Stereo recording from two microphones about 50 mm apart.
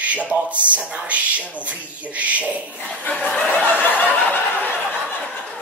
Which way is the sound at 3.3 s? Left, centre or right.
Left.